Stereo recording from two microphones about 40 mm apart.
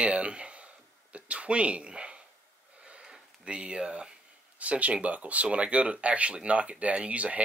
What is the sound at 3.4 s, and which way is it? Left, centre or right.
Speech, right.